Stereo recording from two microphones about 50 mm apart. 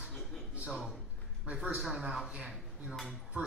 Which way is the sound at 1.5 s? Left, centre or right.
Centre.